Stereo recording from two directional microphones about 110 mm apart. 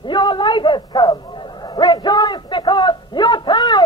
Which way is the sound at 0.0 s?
45° left (ahead or behind).